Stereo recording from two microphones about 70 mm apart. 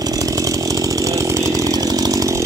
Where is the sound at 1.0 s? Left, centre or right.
Right.